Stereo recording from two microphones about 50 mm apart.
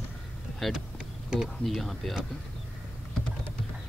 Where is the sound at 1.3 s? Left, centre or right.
Centre.